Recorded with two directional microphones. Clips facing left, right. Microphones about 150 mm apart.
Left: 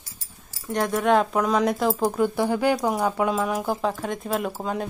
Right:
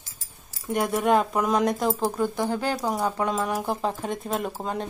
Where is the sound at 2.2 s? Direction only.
10° left (ahead or behind).